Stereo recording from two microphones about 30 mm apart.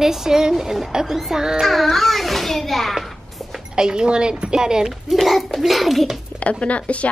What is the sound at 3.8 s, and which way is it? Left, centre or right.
A woman's voice, right.